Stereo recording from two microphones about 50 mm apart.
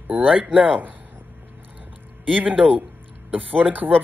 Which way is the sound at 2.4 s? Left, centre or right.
Right.